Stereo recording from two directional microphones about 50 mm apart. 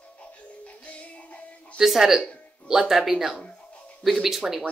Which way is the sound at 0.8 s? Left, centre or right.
Left.